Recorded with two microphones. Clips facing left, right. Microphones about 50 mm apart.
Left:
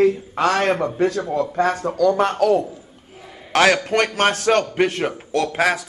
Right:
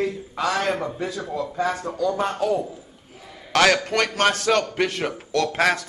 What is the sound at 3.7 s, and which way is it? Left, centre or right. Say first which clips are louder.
Speech: left 3 dB; left.